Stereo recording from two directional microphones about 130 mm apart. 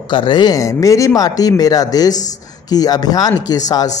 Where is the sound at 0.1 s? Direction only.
40° left (ahead or behind).